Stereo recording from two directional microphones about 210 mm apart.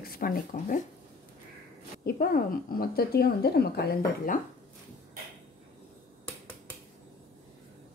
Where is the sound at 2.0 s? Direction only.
45° left (ahead or behind).